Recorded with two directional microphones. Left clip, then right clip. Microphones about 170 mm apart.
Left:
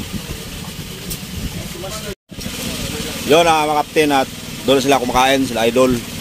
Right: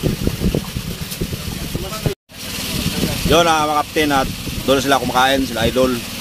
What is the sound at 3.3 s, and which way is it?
Speech, 15° left (ahead or behind).